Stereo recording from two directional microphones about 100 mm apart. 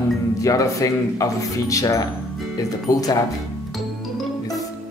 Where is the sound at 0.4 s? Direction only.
35° left (ahead or behind).